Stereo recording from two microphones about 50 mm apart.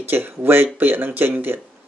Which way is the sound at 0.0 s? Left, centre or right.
Right.